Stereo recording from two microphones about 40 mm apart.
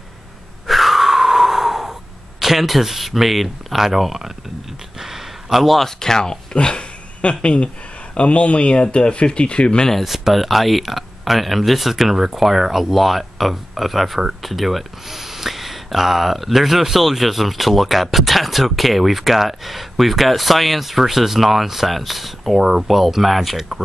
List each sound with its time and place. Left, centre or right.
0.7 s gasp: centre
2.4 s speech: centre
5.0 s a sound: centre
5.9 s speech: centre
6.5 s speech: left
10.0 s speech: centre